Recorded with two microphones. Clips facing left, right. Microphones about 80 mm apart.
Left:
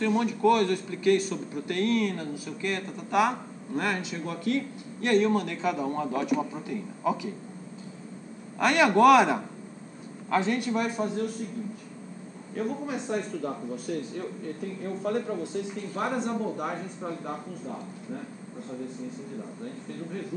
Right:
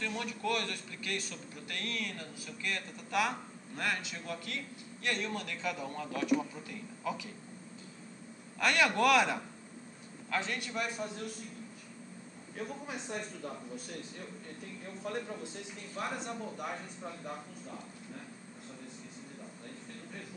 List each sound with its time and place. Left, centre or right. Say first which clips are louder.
0.0 s a man's voice: left 13 dB; left
8.5 s speech: left 8 dB; centre
10.3 s a man's voice: left 10 dB; left
12.5 s speech: left 10 dB; left
15.9 s speech: left 8 dB; left